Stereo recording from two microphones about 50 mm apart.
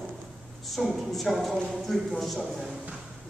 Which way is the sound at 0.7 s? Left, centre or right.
Centre.